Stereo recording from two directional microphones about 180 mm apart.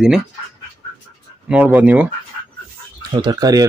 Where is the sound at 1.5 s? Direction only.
10° right (ahead or behind).